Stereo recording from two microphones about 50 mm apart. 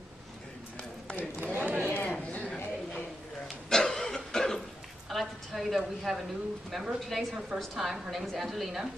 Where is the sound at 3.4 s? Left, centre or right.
Centre.